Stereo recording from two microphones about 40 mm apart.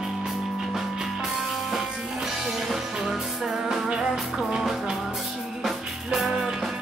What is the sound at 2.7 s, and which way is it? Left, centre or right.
Music, centre.